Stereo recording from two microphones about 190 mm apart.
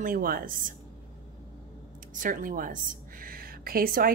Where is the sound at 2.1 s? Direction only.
45° right (ahead or behind).